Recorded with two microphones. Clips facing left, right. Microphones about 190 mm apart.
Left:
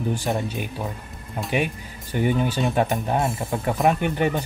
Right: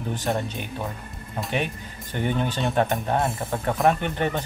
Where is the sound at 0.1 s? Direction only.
10° left (ahead or behind).